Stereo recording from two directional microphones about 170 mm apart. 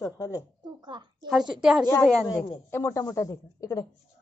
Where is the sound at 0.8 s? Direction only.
25° right (ahead or behind).